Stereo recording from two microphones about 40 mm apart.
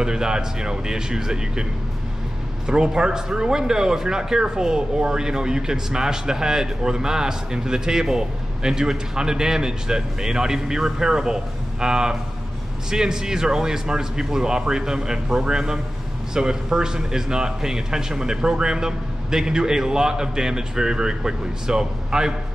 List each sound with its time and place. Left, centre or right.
0.0 s speech: centre